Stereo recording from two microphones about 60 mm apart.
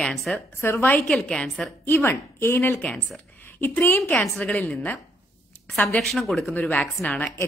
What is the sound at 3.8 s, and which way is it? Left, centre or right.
Speech, left.